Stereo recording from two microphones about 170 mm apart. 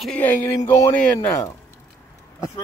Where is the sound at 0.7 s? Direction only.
20° left (ahead or behind).